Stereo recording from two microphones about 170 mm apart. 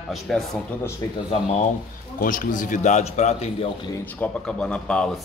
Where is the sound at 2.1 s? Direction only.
55° left (ahead or behind).